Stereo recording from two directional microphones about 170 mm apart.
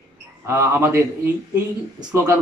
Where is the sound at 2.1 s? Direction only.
15° right (ahead or behind).